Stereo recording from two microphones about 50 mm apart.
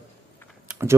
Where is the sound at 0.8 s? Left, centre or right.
Right.